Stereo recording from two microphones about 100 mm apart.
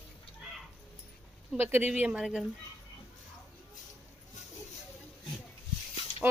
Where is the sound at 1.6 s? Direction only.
20° right (ahead or behind).